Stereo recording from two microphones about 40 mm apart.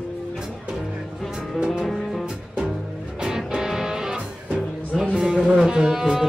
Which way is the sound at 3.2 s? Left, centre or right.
Centre.